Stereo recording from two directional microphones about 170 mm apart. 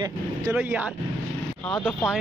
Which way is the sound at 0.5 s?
10° right (ahead or behind).